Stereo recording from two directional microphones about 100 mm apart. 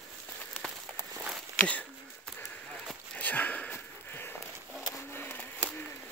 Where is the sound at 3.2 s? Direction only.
15° left (ahead or behind).